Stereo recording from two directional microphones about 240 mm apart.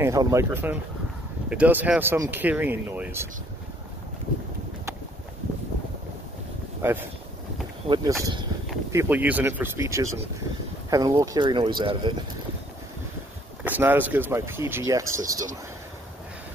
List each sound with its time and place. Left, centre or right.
0.0 s speech: centre
6.8 s speech: centre
13.7 s speech: centre